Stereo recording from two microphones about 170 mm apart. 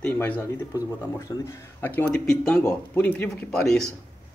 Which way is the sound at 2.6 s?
15° left (ahead or behind).